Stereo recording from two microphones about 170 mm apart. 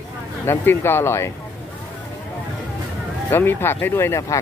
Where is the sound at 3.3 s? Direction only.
15° left (ahead or behind).